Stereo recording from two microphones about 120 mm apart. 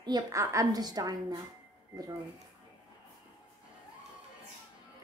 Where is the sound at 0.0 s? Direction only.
35° right (ahead or behind).